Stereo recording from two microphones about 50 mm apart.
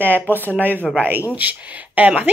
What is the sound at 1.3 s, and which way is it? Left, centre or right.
Speech, right.